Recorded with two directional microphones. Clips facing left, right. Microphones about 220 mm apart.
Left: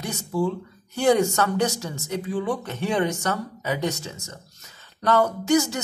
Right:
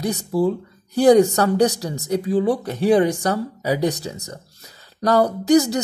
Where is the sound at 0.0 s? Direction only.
35° right (ahead or behind).